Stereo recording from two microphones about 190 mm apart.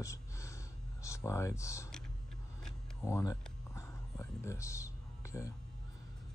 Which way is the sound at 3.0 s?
15° left (ahead or behind).